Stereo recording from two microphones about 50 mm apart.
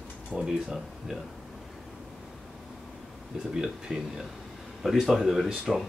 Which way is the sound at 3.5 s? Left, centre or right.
Centre.